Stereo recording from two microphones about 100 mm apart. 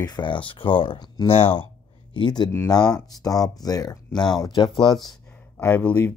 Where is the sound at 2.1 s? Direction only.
50° left (ahead or behind).